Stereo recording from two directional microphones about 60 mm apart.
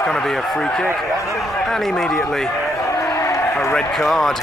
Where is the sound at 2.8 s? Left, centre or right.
Left.